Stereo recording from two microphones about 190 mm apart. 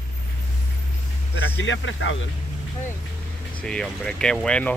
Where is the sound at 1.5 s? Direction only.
80° left.